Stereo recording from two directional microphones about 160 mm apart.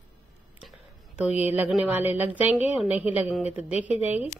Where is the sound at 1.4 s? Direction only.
10° right (ahead or behind).